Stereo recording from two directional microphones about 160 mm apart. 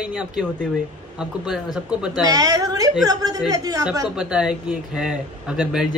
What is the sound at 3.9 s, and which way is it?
A man's voice, 5° right (ahead or behind).